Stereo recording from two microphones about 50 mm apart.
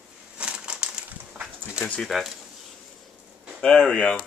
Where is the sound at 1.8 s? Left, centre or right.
Centre.